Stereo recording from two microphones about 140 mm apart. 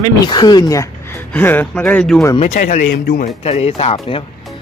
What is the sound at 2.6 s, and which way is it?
Speech, 70° left (ahead or behind).